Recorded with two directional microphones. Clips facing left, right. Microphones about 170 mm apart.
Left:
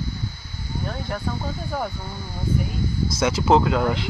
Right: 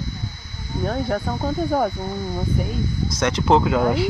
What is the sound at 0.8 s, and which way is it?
Speech, 45° right (ahead or behind).